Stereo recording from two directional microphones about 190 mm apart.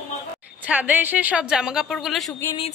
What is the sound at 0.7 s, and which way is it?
Speech, 10° right (ahead or behind).